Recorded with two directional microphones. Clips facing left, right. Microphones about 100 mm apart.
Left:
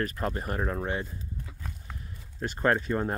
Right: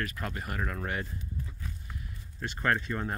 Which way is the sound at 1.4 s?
60° left (ahead or behind).